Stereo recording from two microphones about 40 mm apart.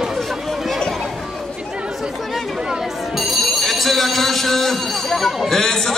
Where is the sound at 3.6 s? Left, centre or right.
Centre.